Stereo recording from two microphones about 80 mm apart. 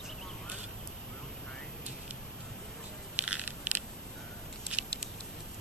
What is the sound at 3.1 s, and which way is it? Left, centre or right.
Crushing, centre.